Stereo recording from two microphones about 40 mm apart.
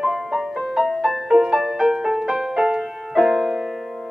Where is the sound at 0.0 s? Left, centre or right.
Centre.